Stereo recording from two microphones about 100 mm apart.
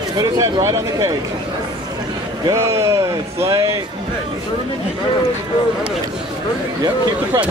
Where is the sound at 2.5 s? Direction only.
30° right (ahead or behind).